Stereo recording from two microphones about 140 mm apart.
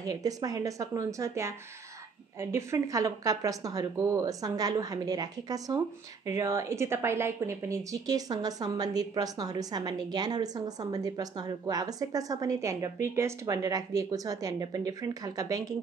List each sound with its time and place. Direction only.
0.0 s speech: 25° right (ahead or behind)
2.5 s speech: 20° right (ahead or behind)